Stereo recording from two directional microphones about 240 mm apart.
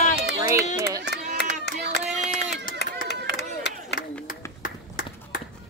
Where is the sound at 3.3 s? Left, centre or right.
Left.